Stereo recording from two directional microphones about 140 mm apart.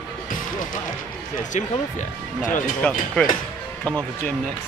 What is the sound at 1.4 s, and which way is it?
Speech, 65° left (ahead or behind).